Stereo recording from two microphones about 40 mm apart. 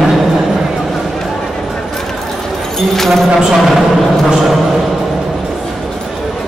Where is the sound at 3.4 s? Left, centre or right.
Centre.